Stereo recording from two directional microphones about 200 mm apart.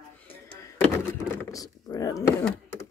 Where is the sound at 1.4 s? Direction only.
15° left (ahead or behind).